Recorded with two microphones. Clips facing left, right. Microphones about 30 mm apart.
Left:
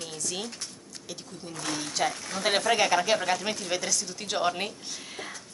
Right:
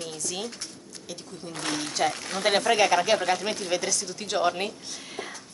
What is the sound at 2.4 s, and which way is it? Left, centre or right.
A woman's voice, centre.